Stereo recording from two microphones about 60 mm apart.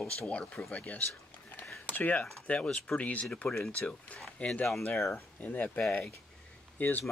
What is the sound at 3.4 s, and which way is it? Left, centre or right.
Speech, left.